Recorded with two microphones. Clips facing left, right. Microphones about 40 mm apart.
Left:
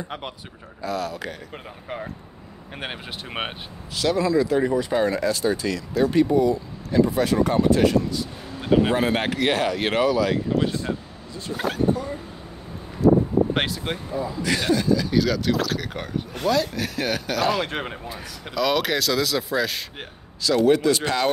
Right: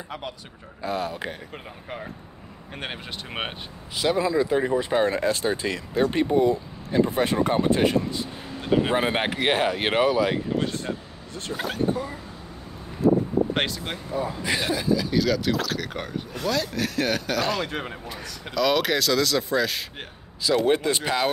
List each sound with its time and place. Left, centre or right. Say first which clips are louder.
0.8 s speech: even; right
1.5 s speech: left 2 dB; centre
3.9 s speech: left 2 dB; centre
8.5 s a sound: left 3 dB; centre
8.9 s speech: left 1 dB; centre
11.5 s speech: left 3 dB; centre
13.5 s speech: left 2 dB; centre
14.4 s speech: left 6 dB; centre
16.4 s speech: left 4 dB; left
16.7 s speech: right 1 dB; centre
17.6 s speech: left 2 dB; left
18.6 s speech: even; centre
20.6 s speech: left 7 dB; right
21.0 s speech: left 1 dB; centre